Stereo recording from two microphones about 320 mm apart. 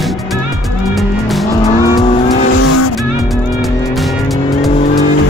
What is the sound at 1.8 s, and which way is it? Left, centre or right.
Vehicle, centre.